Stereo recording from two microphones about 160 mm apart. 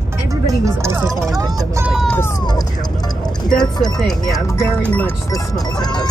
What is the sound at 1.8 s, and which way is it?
Vehicle, centre (ahead or behind).